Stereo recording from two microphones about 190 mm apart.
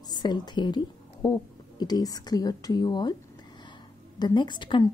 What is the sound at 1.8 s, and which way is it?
Speech, 20° left (ahead or behind).